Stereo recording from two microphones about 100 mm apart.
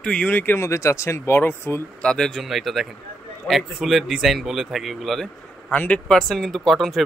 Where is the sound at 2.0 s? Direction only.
5° left (ahead or behind).